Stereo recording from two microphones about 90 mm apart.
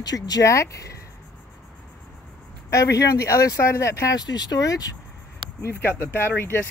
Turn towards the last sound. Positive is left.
turn(degrees=25)  # may be behind; listen again after turning